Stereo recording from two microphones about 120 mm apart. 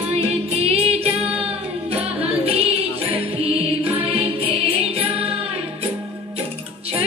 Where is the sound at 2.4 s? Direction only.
55° right (ahead or behind).